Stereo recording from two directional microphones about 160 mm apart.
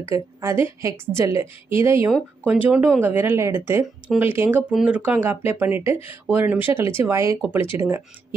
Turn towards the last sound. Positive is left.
turn(degrees=-15)  # may be behind; listen again after turning